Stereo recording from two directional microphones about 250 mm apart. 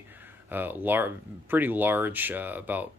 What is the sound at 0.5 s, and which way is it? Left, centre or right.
Speech, centre.